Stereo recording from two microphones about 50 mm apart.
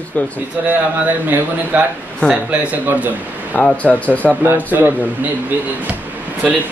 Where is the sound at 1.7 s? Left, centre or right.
Right.